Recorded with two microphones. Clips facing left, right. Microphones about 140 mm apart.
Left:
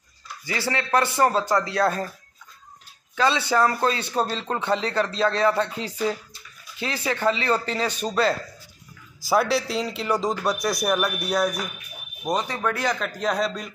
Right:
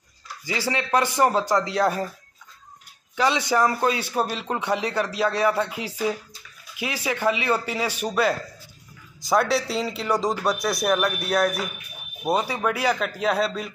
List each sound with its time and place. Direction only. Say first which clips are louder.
0.5 s a man's voice: even; 15° right (ahead or behind)
3.2 s a man's voice: even; 15° right (ahead or behind)
9.2 s a man's voice: even; 5° left (ahead or behind)